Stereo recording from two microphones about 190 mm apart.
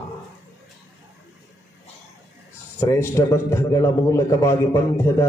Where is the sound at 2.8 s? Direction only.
15° left (ahead or behind).